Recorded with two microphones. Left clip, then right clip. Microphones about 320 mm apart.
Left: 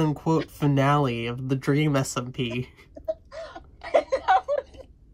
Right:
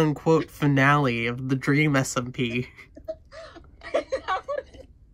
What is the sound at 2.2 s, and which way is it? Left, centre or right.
Speech, right.